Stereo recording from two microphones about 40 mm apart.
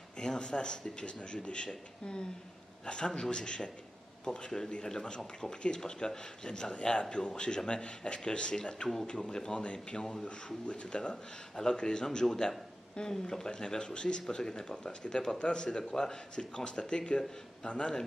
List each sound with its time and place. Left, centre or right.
0.2 s speech: left